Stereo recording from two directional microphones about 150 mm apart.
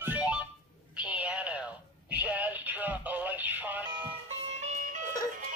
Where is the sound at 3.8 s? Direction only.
35° right (ahead or behind); by 5.0 s 50° right (ahead or behind).